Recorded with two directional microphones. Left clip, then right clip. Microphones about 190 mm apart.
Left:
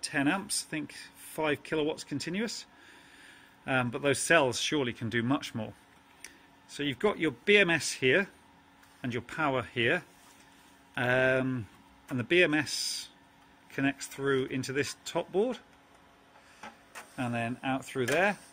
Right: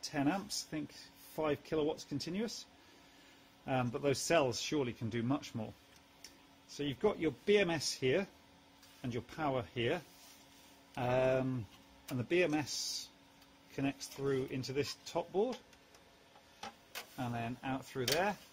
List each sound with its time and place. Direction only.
0.0 s speech: centre (ahead or behind)
3.6 s speech: centre (ahead or behind)
6.8 s speech: 5° left (ahead or behind)
13.7 s speech: 10° left (ahead or behind)
17.2 s speech: 20° left (ahead or behind)